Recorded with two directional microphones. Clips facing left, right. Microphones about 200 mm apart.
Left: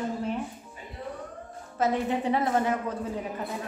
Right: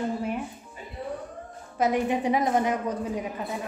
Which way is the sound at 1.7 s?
15° right (ahead or behind).